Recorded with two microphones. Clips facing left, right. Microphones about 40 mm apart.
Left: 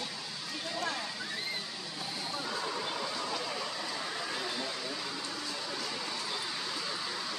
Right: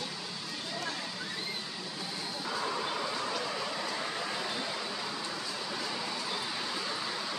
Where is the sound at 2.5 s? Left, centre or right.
Centre.